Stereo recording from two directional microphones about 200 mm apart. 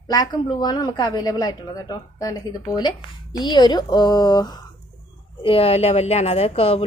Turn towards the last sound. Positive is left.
turn(degrees=30)  # may be behind; listen again after turning